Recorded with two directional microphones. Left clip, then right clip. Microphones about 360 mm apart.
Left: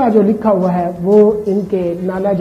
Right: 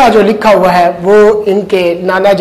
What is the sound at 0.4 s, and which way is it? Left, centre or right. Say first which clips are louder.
A woman's voice: right 9 dB; centre.